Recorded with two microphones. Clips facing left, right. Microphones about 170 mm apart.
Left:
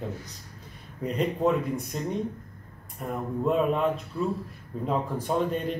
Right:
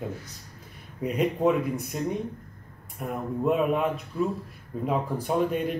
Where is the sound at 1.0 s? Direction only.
5° right (ahead or behind).